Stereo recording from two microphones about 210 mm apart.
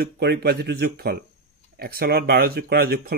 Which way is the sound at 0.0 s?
50° right (ahead or behind).